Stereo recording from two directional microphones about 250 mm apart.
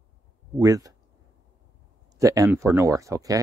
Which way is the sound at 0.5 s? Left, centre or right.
Centre.